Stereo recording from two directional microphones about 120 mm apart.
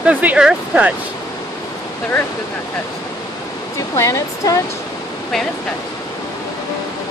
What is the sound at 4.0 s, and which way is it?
Speech, 30° left (ahead or behind).